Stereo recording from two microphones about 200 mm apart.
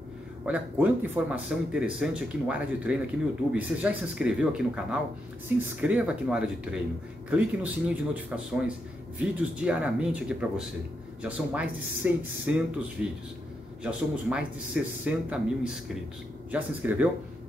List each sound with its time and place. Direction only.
0.5 s speech: 10° right (ahead or behind)